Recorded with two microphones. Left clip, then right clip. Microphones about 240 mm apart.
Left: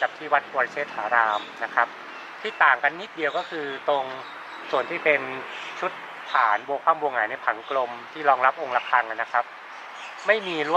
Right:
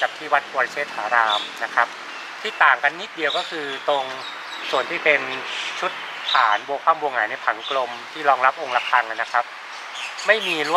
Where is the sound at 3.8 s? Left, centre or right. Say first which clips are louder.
Right 2 dB; left.